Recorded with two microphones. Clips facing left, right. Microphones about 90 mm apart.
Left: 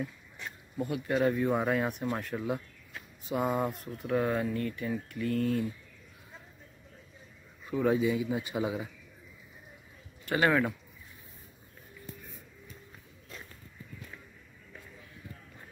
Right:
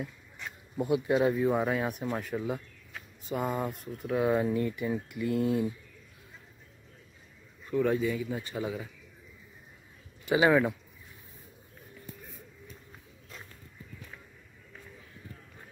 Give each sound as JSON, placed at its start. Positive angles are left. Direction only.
{"t": 0.7, "sound": "speech", "side_deg": -20}
{"t": 7.6, "sound": "speech", "side_deg": 5}
{"t": 10.2, "sound": "speech", "side_deg": -10}